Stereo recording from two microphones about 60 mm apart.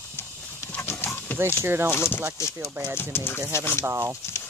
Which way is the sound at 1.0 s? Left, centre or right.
Left.